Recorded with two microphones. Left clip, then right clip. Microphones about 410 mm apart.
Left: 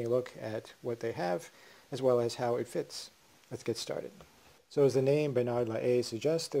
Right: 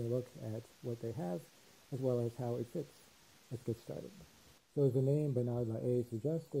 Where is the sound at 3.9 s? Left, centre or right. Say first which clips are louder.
Left 9 dB; centre.